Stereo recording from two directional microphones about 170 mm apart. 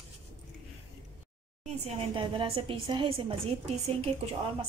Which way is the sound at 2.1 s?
30° right (ahead or behind).